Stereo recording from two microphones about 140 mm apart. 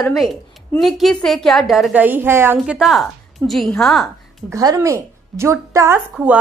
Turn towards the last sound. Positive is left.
turn(degrees=-10)  # may be behind; listen again after turning